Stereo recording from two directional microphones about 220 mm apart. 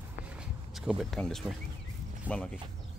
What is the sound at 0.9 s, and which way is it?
Speech, centre (ahead or behind).